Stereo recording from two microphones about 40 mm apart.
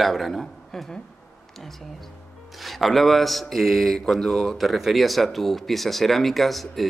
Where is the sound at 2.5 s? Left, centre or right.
Centre.